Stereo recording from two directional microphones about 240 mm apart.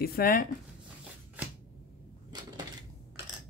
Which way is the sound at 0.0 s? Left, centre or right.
Left.